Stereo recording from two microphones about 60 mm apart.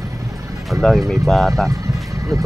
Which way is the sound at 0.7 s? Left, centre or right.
Centre.